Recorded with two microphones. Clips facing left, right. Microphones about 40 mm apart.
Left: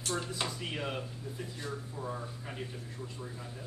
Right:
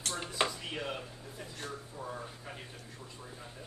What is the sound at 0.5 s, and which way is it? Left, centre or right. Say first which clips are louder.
Speech: left 1 dB; centre.